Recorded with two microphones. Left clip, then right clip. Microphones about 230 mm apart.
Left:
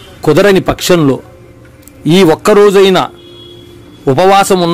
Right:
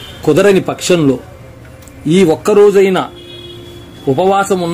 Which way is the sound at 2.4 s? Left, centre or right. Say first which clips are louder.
Left 1 dB; left.